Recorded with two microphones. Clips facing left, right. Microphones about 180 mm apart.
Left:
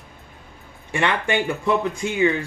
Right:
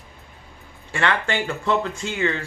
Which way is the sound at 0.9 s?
15° left (ahead or behind).